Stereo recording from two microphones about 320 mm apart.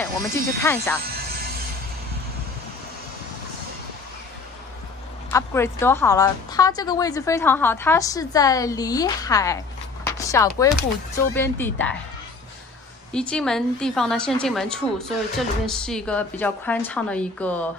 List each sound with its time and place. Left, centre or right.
0.0 s a woman's voice: centre
1.0 s music: right
5.3 s a woman's voice: centre
13.1 s a woman's voice: centre